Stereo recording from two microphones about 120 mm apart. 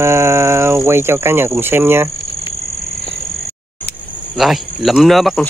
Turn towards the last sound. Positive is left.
turn(degrees=0)  # may be behind; listen again after turning